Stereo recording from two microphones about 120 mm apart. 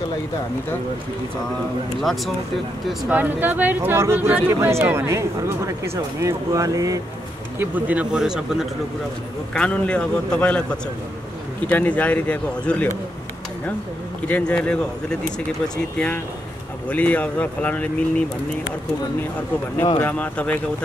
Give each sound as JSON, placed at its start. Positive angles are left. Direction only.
{"t": 2.0, "sound": "speech", "side_deg": 0}
{"t": 3.1, "sound": "speech", "side_deg": -15}
{"t": 7.5, "sound": "speech", "side_deg": -15}
{"t": 9.5, "sound": "a man's voice", "side_deg": 10}
{"t": 14.2, "sound": "a man's voice", "side_deg": 10}
{"t": 20.0, "sound": "a man's voice", "side_deg": 15}